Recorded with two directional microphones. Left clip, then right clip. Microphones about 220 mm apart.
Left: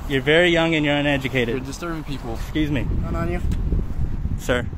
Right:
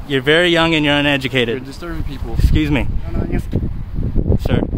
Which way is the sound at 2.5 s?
35° right (ahead or behind).